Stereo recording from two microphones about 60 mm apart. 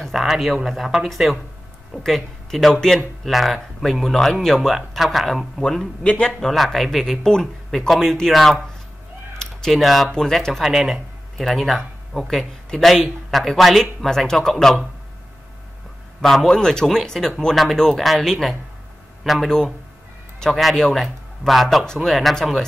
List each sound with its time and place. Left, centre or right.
0.1 s speech: centre
3.0 s speech: centre
6.0 s speech: centre
6.4 s speech: centre
9.4 s typing: centre
10.1 s speech: centre
10.6 s speech: centre
11.3 s speech: centre
16.2 s speech: centre
20.5 s speech: centre